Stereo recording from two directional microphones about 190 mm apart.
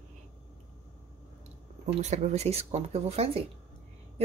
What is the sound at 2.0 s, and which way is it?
Speech, 35° right (ahead or behind).